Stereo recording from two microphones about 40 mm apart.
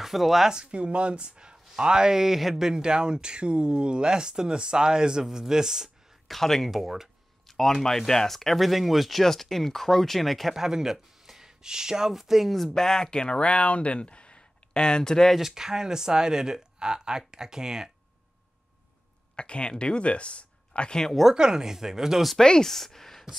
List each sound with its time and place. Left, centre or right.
0.0 s speech: centre
0.5 s speech: right; by 2.7 s centre
2.7 s speech: centre
6.2 s speech: centre
6.7 s speech: centre
7.4 s speech: centre
10.5 s speech: centre
12.7 s speech: centre
15.3 s speech: centre
19.3 s speech: left
21.3 s speech: centre
22.4 s speech: centre
22.7 s speech: centre